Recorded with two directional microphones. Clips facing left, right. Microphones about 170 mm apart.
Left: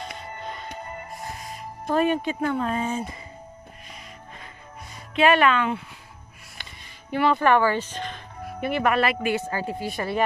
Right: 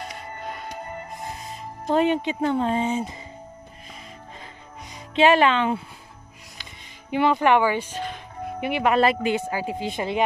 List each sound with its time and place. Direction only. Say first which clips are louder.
0.0 s music: right 1 dB; 10° right (ahead or behind)
1.9 s speech: right 2 dB; 20° right (ahead or behind)
5.1 s speech: right 2 dB; 25° right (ahead or behind)
7.1 s speech: right 1 dB; 15° right (ahead or behind)
9.3 s speech: right 1 dB; 10° right (ahead or behind)